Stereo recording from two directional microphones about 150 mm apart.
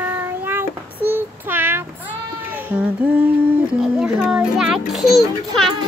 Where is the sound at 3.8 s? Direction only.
5° right (ahead or behind).